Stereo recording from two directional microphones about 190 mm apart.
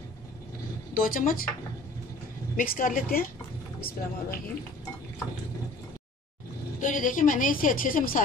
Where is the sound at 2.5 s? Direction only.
45° left (ahead or behind).